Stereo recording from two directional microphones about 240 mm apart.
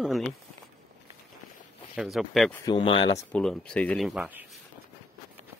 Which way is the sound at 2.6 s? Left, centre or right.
Left.